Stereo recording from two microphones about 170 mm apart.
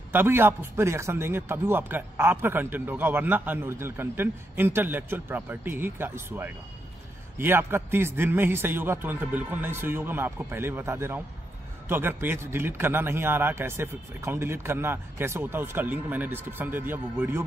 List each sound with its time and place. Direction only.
0.1 s a man's voice: 10° right (ahead or behind)